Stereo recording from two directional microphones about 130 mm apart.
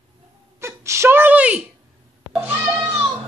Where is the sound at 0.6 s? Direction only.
20° right (ahead or behind).